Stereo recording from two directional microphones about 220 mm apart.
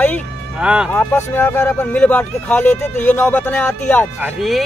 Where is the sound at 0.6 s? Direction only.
5° right (ahead or behind).